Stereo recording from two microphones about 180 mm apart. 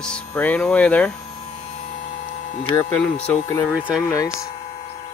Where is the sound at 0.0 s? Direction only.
5° left (ahead or behind).